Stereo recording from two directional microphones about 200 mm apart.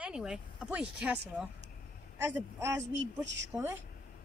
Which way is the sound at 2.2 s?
10° right (ahead or behind).